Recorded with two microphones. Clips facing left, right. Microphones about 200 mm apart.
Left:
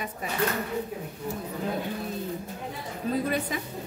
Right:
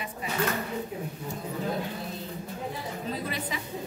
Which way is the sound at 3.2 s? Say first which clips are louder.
Left 5 dB; 50° left (ahead or behind).